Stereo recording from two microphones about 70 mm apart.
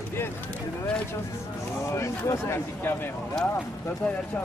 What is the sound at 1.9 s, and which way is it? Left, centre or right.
Speech, left.